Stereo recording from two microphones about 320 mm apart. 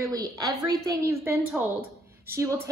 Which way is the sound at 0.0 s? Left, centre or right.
Centre.